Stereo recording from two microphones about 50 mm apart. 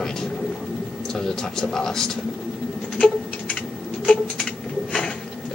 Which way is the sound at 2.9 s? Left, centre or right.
Left.